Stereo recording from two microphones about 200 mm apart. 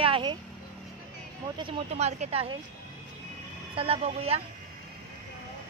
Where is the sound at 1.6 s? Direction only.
30° right (ahead or behind).